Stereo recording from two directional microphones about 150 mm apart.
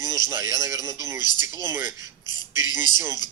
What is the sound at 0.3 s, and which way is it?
A man's voice, 20° right (ahead or behind).